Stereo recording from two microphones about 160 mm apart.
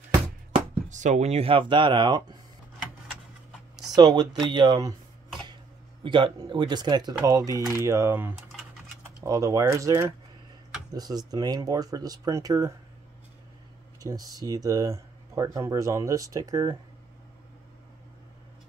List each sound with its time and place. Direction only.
0.8 s speech: 50° right (ahead or behind); by 2.3 s 25° right (ahead or behind)
3.9 s speech: 25° right (ahead or behind)
6.0 s speech: 30° right (ahead or behind)
14.0 s speech: 25° right (ahead or behind)